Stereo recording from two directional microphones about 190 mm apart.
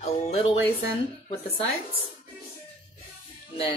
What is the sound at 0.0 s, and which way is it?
Music, 35° left (ahead or behind).